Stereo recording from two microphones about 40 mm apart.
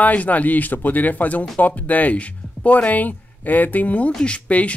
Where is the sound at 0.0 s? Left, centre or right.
Left.